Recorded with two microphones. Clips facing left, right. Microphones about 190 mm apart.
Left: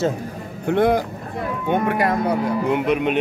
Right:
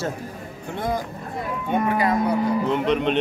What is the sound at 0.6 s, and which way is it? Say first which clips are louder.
A man's voice: left 9 dB; 70° left (ahead or behind).